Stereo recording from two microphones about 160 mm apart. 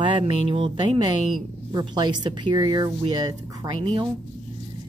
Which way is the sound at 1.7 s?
25° right (ahead or behind).